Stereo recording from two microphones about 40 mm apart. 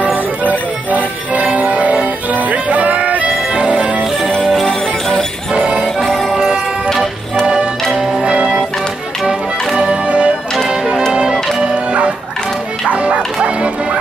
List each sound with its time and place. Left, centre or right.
0.5 s music: right
3.4 s music: right
4.5 s music: centre
6.0 s music: centre
7.4 s music: right
9.8 s music: right
10.7 s music: centre
11.6 s music: right